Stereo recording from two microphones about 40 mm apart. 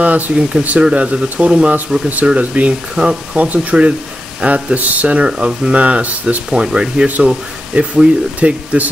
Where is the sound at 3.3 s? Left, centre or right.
Right.